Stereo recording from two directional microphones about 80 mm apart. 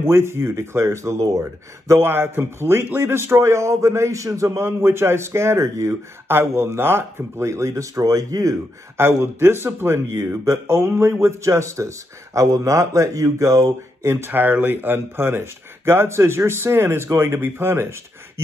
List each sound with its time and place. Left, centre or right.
0.0 s speech: right
4.6 s speech: right
8.9 s speech: right
13.7 s speech: right